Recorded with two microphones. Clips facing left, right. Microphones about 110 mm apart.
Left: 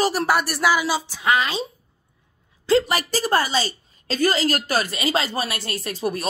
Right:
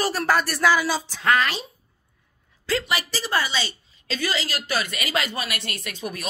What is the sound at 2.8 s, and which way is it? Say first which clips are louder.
A woman's voice: left 5 dB; 40° left (ahead or behind).